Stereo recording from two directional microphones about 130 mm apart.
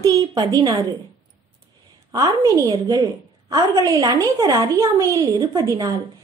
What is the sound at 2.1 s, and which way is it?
A woman's voice, 25° right (ahead or behind).